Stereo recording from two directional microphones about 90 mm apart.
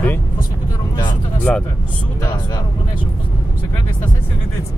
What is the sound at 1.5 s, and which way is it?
Speech, 15° left (ahead or behind).